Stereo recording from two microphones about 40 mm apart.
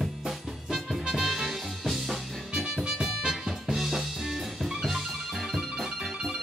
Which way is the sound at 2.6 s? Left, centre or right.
Centre.